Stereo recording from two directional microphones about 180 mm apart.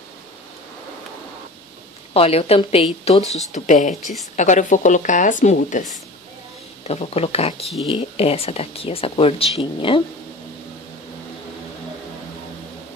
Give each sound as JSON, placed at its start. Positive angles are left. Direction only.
{"t": 2.1, "sound": "speech", "side_deg": 35}
{"t": 3.5, "sound": "a woman's voice", "side_deg": 45}
{"t": 4.0, "sound": "a woman's voice", "side_deg": 0}
{"t": 4.4, "sound": "a woman's voice", "side_deg": 45}
{"t": 6.9, "sound": "speech", "side_deg": 35}
{"t": 7.6, "sound": "a woman's voice", "side_deg": 0}
{"t": 7.9, "sound": "speech", "side_deg": 35}